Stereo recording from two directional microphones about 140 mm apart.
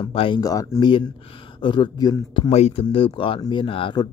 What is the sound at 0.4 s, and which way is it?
A man's voice, 25° left (ahead or behind).